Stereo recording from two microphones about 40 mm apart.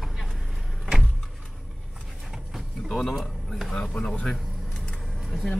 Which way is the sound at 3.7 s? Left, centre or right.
Centre.